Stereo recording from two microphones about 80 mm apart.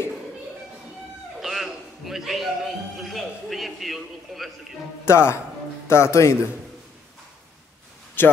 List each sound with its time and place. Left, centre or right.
1.4 s a man's voice: centre
5.0 s a man's voice: left
8.2 s a man's voice: left